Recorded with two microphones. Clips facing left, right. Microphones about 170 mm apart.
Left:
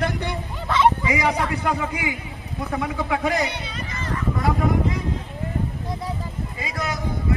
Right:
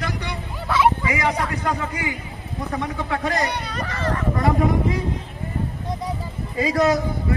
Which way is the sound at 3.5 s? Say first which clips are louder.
Right 4 dB; 65° right (ahead or behind).